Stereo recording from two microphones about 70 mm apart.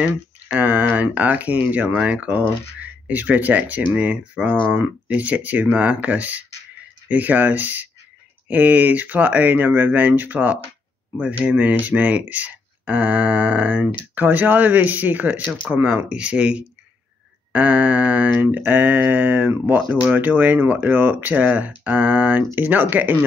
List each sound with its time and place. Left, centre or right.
0.0 s speech: right